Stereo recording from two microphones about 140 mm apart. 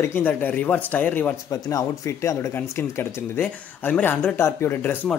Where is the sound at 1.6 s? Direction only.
25° left (ahead or behind).